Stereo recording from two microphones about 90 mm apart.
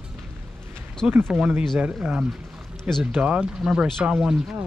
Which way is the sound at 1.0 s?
10° right (ahead or behind).